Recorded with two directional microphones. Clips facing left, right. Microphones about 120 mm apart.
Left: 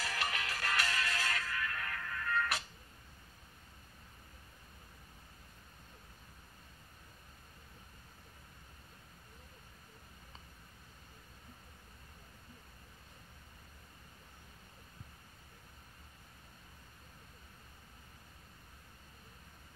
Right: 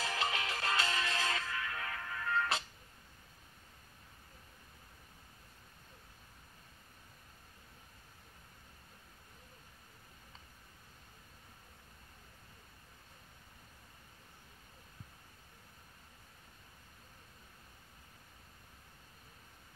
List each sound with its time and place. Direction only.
0.0 s music: 25° right (ahead or behind)